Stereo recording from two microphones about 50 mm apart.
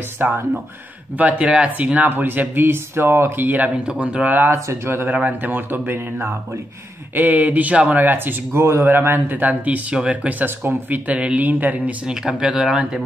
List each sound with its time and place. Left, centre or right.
0.2 s speech: right
2.0 s speech: right
3.7 s speech: centre
4.3 s speech: right
5.1 s speech: right
7.2 s speech: right
8.0 s speech: right
8.5 s speech: right
8.8 s speech: right
9.4 s speech: right
10.4 s speech: right
11.1 s speech: right
12.0 s speech: centre